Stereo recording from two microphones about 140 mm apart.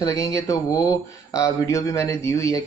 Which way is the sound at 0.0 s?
20° left (ahead or behind).